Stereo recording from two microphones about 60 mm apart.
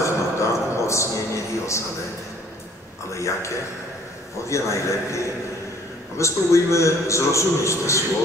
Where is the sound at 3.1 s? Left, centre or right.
Left.